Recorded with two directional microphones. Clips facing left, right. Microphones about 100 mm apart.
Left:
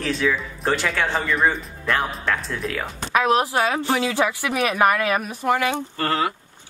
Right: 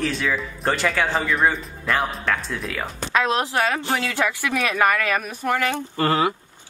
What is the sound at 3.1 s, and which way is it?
Speech, 15° left (ahead or behind).